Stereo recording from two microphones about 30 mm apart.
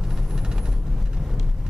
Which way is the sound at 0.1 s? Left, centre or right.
Right.